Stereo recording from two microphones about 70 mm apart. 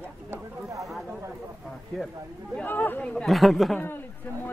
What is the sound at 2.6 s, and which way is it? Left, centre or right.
Speech, left.